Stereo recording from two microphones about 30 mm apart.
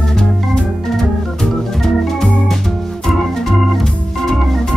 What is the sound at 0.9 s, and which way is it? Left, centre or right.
Organ, centre.